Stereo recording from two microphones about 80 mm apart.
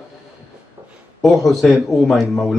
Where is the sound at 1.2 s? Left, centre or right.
Centre.